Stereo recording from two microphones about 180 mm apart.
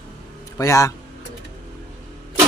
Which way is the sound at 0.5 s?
15° left (ahead or behind).